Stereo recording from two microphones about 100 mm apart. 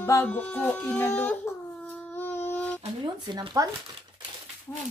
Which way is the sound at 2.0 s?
20° left (ahead or behind).